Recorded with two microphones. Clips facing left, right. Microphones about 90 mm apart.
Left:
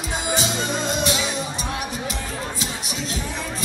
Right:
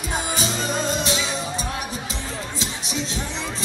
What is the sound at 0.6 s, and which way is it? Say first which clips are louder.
Music: even; 35° right (ahead or behind).